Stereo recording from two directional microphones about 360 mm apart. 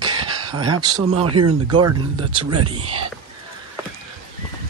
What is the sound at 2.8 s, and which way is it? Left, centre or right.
Speech, right.